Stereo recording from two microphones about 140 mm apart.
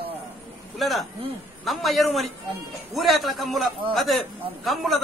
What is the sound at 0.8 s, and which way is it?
A man's voice, centre (ahead or behind).